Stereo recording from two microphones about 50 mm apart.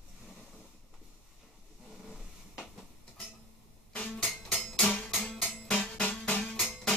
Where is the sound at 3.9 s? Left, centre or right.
Left.